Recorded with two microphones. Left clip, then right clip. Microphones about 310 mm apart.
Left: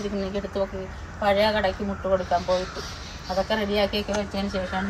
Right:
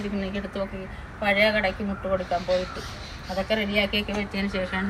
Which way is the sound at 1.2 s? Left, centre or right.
Centre.